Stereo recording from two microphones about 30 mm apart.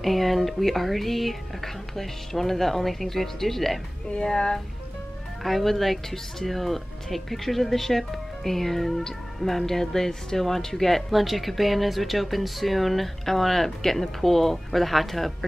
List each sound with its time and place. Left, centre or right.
0.0 s speech: centre
4.3 s speech: centre
5.4 s speech: centre
11.1 s speech: centre